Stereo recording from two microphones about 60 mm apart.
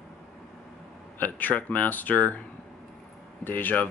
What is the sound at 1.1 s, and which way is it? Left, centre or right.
Speech, left.